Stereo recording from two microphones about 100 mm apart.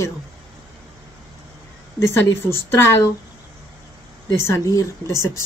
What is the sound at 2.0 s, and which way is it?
Speech, 30° left (ahead or behind).